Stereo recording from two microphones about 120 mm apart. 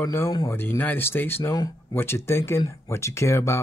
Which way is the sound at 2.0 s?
20° left (ahead or behind).